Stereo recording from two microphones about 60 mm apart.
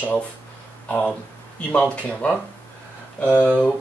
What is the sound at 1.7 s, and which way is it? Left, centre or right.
Speech, centre.